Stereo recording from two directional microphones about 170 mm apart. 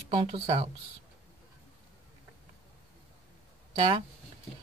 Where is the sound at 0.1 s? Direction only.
35° right (ahead or behind).